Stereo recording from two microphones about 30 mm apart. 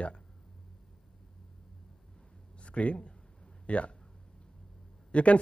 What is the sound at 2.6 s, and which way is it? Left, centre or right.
Speech, left.